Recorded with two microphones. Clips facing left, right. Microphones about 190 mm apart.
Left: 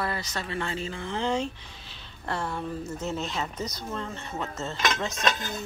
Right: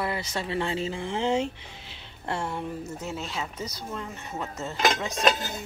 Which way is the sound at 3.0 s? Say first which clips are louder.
Left 2 dB; 10° right (ahead or behind).